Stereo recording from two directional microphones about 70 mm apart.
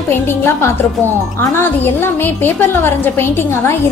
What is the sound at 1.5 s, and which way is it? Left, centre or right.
A woman's voice, left.